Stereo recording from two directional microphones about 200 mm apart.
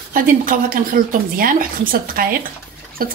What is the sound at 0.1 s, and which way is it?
Speech, 45° right (ahead or behind).